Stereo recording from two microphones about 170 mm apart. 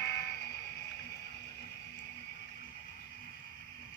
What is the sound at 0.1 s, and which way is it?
Vehicle, 20° left (ahead or behind).